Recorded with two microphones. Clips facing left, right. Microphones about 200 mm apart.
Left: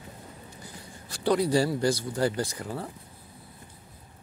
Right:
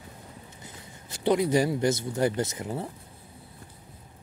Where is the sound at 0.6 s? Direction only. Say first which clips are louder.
Left 2 dB; 20° right (ahead or behind).